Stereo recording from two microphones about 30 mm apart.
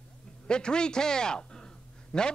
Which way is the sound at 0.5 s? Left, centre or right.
Left.